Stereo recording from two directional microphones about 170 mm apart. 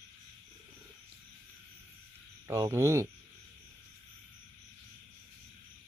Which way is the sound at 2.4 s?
20° right (ahead or behind).